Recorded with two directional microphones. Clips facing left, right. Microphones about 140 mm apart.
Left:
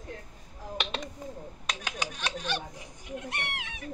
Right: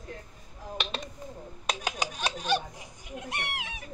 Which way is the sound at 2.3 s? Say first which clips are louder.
Right 6 dB; 10° right (ahead or behind).